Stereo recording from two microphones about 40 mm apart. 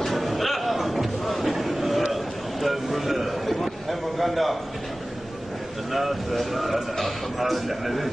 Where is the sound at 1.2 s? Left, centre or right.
Centre.